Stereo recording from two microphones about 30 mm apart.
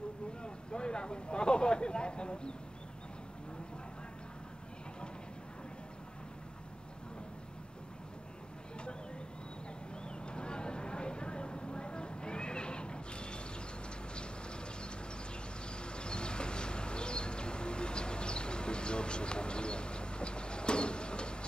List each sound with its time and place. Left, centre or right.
0.4 s speech: left
10.0 s vehicle: left
15.7 s a sound: left